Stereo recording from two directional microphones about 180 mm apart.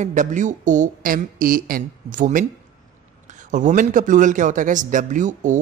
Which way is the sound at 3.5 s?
45° right (ahead or behind).